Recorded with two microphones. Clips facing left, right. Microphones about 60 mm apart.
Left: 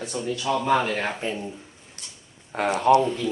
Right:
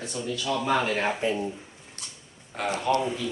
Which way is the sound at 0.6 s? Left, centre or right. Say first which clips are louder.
Left 1 dB; centre.